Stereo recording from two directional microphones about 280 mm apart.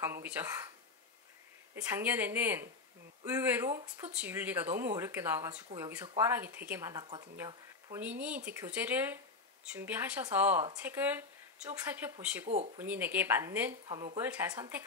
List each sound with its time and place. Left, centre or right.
0.0 s speech: centre
1.8 s speech: centre
12.4 s speech: right
12.7 s speech: centre